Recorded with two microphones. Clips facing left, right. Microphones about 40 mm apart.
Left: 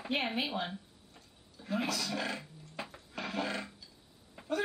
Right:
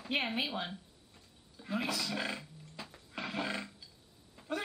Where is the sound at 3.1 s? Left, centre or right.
Centre.